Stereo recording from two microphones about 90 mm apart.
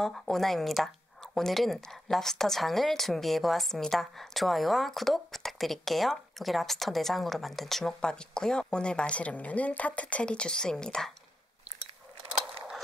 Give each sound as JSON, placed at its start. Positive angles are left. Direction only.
{"t": 0.0, "sound": "speech", "side_deg": 5}